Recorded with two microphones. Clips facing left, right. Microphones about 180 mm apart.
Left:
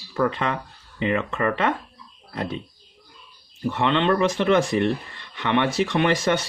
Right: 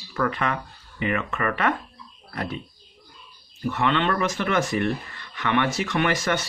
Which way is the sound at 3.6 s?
25° left (ahead or behind).